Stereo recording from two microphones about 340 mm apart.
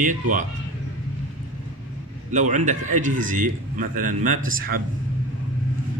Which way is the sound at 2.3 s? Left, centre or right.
Right.